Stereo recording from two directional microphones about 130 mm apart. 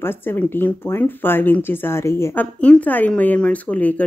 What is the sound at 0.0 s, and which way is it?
A woman's voice, 15° left (ahead or behind).